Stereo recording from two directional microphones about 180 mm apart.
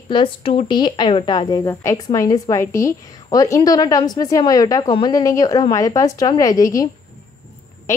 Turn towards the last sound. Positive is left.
turn(degrees=20)  # may be behind; listen again after turning